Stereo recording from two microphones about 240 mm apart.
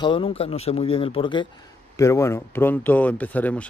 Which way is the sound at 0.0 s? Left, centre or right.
Left.